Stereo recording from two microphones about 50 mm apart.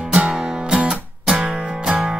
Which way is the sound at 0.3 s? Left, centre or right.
Centre.